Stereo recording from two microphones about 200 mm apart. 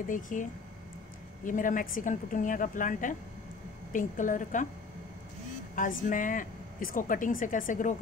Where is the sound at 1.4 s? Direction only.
40° left (ahead or behind).